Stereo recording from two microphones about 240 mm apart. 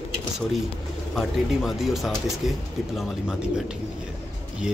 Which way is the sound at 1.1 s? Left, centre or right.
Centre.